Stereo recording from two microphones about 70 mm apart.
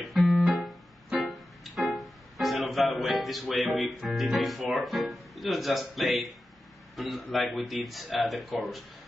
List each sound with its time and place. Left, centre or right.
0.0 s music: centre
3.7 s speech: centre
7.2 s speech: centre